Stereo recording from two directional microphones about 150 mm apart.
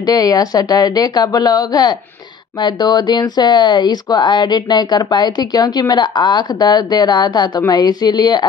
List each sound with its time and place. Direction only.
0.0 s speech: 25° left (ahead or behind)